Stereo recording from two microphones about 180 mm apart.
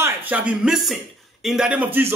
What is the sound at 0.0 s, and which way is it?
A man's voice, 10° right (ahead or behind).